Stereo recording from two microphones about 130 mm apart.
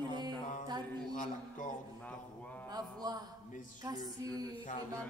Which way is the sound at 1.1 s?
90° left.